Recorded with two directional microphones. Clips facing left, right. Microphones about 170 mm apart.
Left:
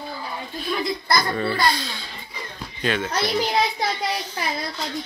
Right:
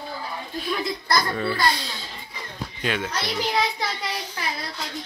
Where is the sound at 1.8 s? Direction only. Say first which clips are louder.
Left 2 dB; 35° right (ahead or behind).